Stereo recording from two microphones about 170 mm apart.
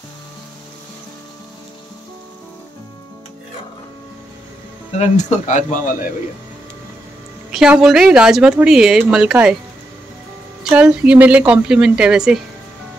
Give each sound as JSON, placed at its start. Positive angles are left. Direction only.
{"t": 4.9, "sound": "speech", "side_deg": 40}
{"t": 7.5, "sound": "speech", "side_deg": -5}
{"t": 10.6, "sound": "speech", "side_deg": -5}